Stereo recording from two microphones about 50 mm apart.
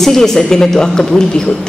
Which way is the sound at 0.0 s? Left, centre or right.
Centre.